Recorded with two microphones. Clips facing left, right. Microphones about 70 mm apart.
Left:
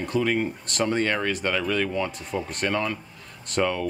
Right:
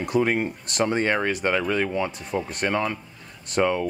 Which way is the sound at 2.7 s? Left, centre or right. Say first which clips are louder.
Right 1 dB; centre.